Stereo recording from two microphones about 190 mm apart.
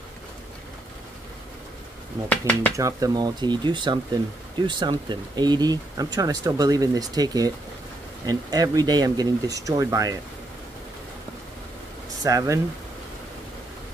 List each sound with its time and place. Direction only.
2.2 s speech: 5° left (ahead or behind)
2.7 s speech: 15° right (ahead or behind)
12.2 s speech: 20° right (ahead or behind)